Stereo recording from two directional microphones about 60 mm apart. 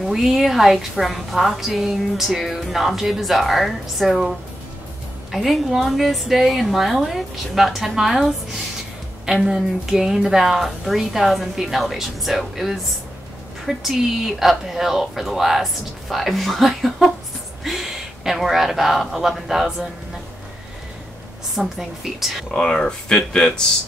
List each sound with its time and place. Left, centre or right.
0.1 s a woman's voice: centre
21.5 s a woman's voice: centre
22.5 s speech: centre